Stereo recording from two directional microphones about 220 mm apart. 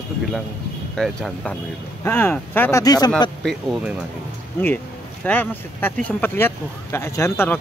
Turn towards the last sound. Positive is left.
turn(degrees=10)  # may be behind; listen again after turning